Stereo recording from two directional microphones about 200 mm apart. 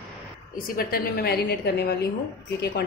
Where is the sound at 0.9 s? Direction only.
50° left (ahead or behind).